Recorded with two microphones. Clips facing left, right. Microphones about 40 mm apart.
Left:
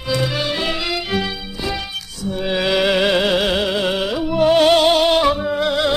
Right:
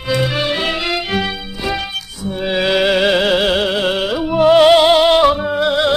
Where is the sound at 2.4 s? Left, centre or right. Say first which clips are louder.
Right 3 dB; centre.